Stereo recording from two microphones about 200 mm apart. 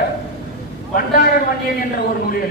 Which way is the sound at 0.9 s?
45° left (ahead or behind).